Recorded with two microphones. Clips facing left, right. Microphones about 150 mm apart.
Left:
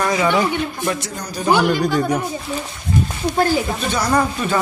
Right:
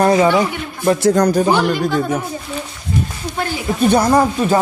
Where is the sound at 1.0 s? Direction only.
90° right.